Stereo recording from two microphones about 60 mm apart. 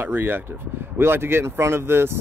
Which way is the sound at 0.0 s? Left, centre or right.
Right.